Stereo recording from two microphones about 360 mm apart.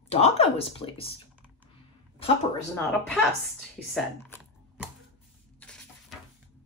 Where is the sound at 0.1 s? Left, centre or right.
Centre.